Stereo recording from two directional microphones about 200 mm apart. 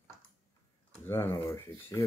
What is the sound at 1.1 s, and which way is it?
Speech, 10° left (ahead or behind).